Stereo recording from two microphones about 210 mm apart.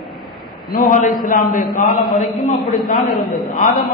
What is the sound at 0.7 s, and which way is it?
A man's voice, 40° left (ahead or behind).